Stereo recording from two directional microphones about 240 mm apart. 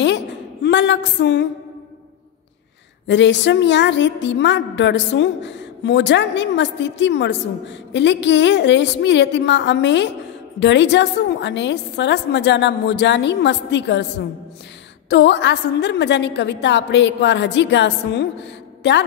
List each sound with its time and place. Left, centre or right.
0.7 s a woman's voice: left
3.1 s a woman's voice: left
15.0 s a woman's voice: left